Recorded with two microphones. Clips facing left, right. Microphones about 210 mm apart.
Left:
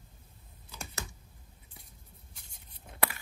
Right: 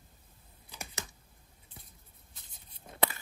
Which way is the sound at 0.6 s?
20° right (ahead or behind).